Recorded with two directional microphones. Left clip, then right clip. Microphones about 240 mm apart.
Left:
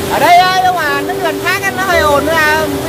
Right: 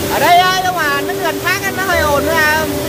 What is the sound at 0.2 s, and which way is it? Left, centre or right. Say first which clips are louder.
Speech: left 3 dB; centre.